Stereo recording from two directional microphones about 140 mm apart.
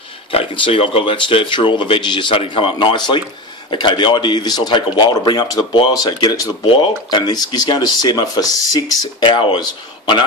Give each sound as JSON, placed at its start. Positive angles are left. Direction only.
{"t": 0.3, "sound": "speech", "side_deg": 40}